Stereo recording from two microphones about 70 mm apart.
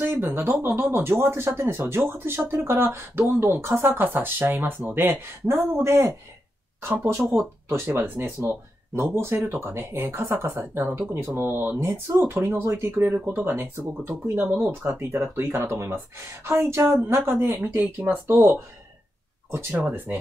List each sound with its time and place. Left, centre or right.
0.0 s speech: right